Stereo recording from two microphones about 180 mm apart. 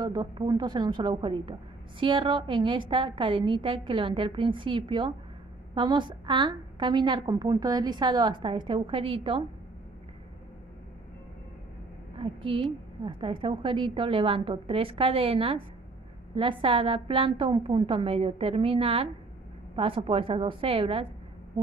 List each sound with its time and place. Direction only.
0.0 s a woman's voice: 20° right (ahead or behind)
12.2 s a woman's voice: 30° right (ahead or behind)